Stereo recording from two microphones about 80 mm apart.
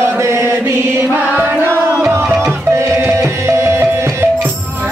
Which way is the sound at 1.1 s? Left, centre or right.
Right.